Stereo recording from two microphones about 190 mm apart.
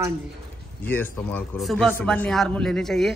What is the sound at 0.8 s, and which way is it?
A man's voice, 10° left (ahead or behind).